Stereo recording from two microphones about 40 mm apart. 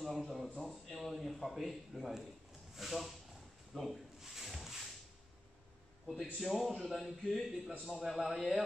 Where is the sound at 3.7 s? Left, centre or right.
Centre.